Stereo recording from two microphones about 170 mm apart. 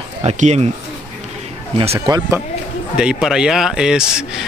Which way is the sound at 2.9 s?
5° right (ahead or behind).